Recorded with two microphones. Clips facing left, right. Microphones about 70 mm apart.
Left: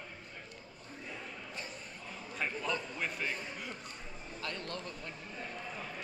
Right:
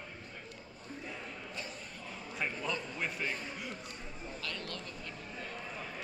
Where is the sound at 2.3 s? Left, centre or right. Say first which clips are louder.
Left 1 dB; centre.